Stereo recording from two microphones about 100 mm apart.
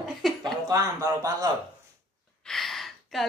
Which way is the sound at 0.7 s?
35° right (ahead or behind).